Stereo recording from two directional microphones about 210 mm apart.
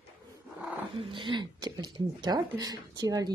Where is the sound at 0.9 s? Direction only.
25° right (ahead or behind).